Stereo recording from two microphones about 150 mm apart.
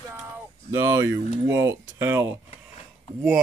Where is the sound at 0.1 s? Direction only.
15° right (ahead or behind).